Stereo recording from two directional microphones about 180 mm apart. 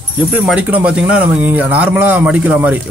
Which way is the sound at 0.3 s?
5° right (ahead or behind).